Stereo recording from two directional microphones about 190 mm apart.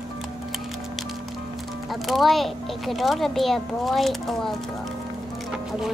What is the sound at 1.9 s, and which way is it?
Speech, centre (ahead or behind).